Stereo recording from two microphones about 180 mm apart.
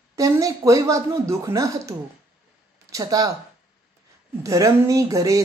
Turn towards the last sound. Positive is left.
turn(degrees=-20)  # may be behind; listen again after turning